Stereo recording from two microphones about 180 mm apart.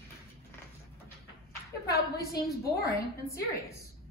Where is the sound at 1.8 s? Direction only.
60° left (ahead or behind).